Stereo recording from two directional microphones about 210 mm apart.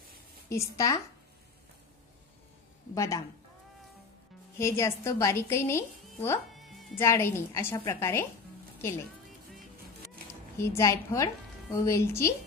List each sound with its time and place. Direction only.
0.5 s a woman's voice: 15° left (ahead or behind)
2.9 s a woman's voice: 15° left (ahead or behind)
4.6 s a woman's voice: 15° left (ahead or behind)
6.5 s music: centre (ahead or behind)
7.0 s a woman's voice: 10° left (ahead or behind)
10.6 s a woman's voice: 15° left (ahead or behind)